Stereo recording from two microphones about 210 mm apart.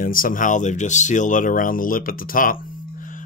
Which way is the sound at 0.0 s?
40° left (ahead or behind).